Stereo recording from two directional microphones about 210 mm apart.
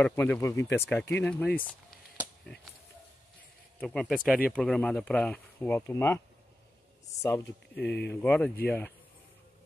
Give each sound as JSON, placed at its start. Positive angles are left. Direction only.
{"t": 0.0, "sound": "speech", "side_deg": 10}
{"t": 3.8, "sound": "speech", "side_deg": 5}
{"t": 7.4, "sound": "speech", "side_deg": 55}
{"t": 8.1, "sound": "speech", "side_deg": 5}